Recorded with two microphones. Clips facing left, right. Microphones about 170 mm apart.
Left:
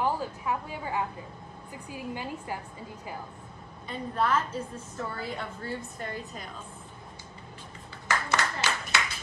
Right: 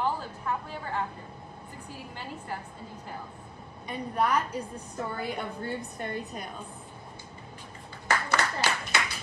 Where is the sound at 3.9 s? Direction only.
15° right (ahead or behind).